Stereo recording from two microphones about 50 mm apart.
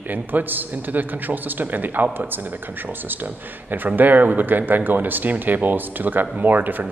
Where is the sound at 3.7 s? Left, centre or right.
Right.